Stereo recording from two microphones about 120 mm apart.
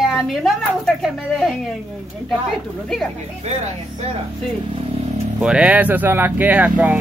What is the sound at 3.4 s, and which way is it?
Speech, 65° right (ahead or behind).